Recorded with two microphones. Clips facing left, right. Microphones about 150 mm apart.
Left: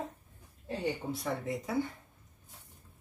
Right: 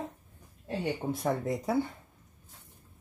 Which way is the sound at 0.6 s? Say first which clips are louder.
Right 2 dB; 50° right (ahead or behind).